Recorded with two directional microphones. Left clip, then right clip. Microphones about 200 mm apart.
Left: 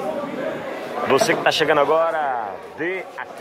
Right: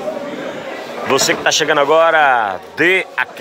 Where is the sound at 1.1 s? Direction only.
5° right (ahead or behind).